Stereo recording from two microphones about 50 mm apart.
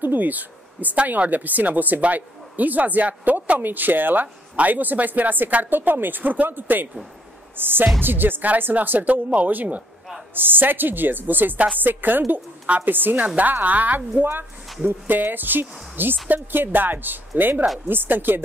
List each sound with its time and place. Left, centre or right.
0.0 s speech: right